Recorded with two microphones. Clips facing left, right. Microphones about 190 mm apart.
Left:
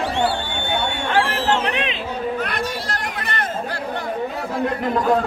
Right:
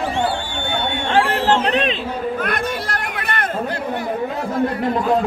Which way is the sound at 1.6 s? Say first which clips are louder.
Right 4 dB; 40° right (ahead or behind).